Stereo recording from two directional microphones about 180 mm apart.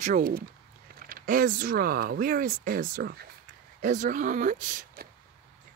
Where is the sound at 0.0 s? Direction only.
50° right (ahead or behind).